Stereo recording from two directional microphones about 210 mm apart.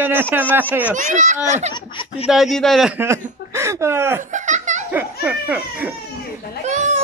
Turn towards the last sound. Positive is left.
turn(degrees=-35)  # may be behind; listen again after turning